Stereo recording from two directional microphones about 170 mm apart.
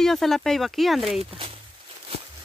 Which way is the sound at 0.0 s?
Centre (ahead or behind).